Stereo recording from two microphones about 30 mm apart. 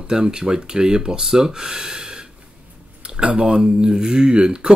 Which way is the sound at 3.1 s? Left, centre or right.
Right.